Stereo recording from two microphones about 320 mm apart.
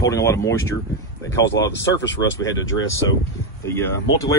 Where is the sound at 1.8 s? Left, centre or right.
Left.